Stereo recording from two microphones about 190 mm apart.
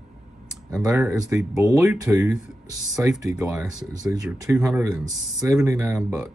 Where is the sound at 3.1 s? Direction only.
5° right (ahead or behind).